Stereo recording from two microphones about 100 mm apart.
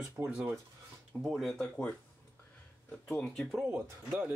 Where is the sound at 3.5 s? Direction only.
5° right (ahead or behind).